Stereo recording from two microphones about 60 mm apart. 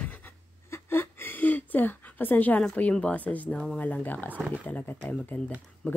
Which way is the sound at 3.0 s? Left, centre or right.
Left.